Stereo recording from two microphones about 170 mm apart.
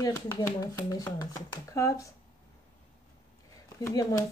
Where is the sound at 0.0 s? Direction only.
20° left (ahead or behind).